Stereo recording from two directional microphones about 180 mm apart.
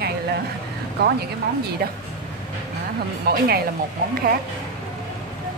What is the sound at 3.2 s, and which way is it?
Speech, 60° right (ahead or behind).